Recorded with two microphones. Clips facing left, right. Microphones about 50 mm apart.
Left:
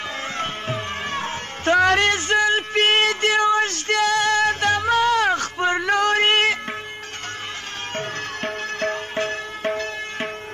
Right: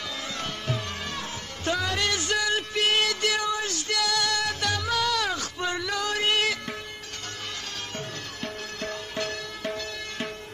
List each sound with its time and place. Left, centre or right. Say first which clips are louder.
0.4 s music: left 5 dB; left
7.9 s music: left 8 dB; left